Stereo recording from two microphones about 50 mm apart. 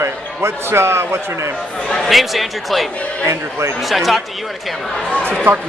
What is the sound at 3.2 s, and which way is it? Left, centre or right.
Speech, right.